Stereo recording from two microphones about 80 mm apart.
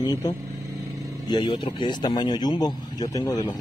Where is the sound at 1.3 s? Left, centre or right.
Left.